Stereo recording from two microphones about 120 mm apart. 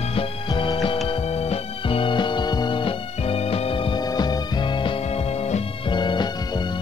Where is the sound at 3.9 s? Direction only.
35° left (ahead or behind).